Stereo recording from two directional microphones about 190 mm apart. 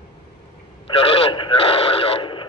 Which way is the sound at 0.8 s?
30° left (ahead or behind).